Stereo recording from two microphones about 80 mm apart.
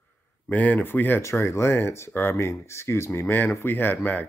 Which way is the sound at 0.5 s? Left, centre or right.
Left.